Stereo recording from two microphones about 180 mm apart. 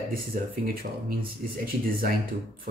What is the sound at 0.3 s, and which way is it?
Speech, 50° right (ahead or behind).